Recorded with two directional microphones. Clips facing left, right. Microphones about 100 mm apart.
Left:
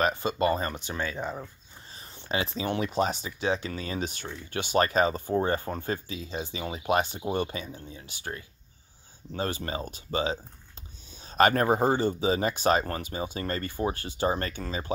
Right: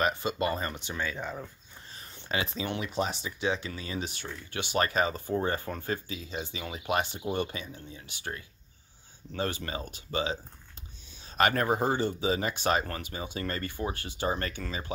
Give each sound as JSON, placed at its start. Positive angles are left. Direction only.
{"t": 0.0, "sound": "speech", "side_deg": 35}
{"t": 2.3, "sound": "speech", "side_deg": 30}